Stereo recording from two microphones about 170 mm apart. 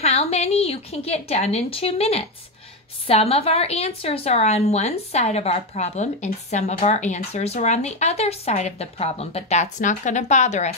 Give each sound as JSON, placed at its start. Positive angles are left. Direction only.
{"t": 0.0, "sound": "a woman's voice", "side_deg": 40}